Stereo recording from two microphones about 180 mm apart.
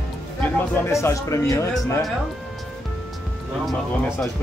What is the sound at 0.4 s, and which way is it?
Speech, 10° left (ahead or behind).